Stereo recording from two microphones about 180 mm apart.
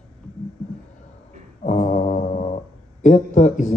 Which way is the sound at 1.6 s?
40° left (ahead or behind).